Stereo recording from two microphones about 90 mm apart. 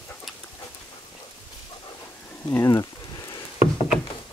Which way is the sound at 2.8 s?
45° left (ahead or behind).